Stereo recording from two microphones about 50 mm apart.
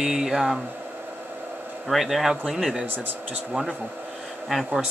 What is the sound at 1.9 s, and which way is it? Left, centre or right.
Speech, centre.